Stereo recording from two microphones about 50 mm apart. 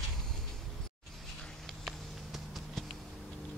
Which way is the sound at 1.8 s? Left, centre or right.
Centre.